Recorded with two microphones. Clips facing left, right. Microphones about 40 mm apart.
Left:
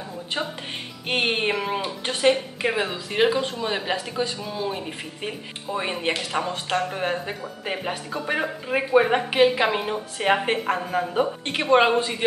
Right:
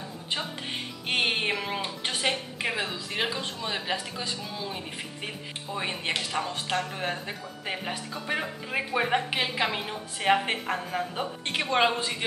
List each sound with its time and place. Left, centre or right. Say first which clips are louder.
1.0 s a woman's voice: left 4 dB; centre